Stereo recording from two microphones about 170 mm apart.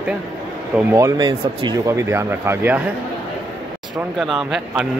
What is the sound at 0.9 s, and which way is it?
Speech, 20° right (ahead or behind).